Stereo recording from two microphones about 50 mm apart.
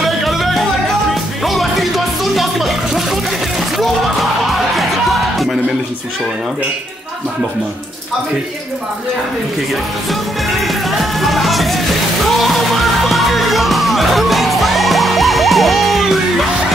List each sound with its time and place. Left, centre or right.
0.0 s music: centre
4.7 s music: centre
10.9 s music: centre